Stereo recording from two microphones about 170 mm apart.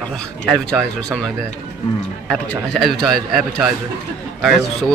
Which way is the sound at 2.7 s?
Centre (ahead or behind).